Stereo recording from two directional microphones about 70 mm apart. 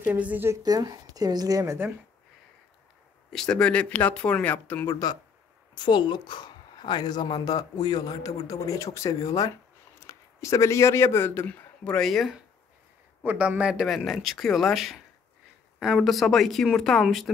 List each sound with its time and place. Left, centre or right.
0.0 s a woman's voice: right
0.6 s speech: right
3.3 s speech: centre
4.9 s speech: left
5.8 s a man's voice: left
11.4 s speech: centre
12.1 s speech: centre
13.2 s speech: right; by 17.3 s centre